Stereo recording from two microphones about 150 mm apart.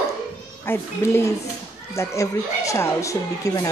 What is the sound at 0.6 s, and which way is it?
A woman's voice, 15° left (ahead or behind).